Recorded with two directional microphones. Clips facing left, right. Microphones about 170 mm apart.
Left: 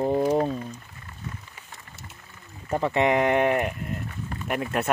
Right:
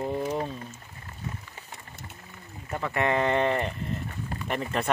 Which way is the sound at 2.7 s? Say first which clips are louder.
Left 7 dB; 30° left (ahead or behind).